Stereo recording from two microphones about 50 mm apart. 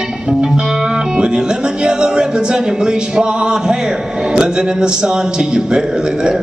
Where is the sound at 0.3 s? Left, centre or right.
Centre.